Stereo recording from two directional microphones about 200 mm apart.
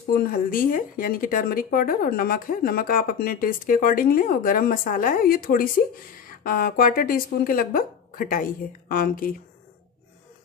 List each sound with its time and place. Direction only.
0.1 s speech: 45° left (ahead or behind)